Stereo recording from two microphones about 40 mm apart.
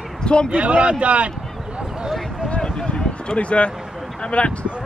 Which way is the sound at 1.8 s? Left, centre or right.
Centre.